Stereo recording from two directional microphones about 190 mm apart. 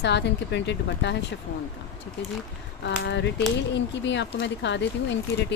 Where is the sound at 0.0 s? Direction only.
65° left (ahead or behind).